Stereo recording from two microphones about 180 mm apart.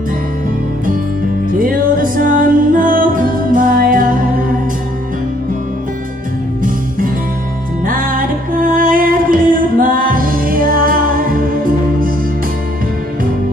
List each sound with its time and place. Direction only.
1.6 s music: 50° right (ahead or behind)
7.8 s music: 50° right (ahead or behind)